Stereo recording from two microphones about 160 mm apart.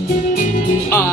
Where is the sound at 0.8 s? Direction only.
15° left (ahead or behind).